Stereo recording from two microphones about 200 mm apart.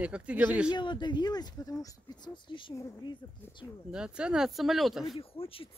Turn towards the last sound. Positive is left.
turn(degrees=0)  # may be behind; listen again after turning